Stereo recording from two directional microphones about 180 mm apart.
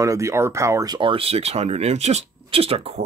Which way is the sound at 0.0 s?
15° right (ahead or behind).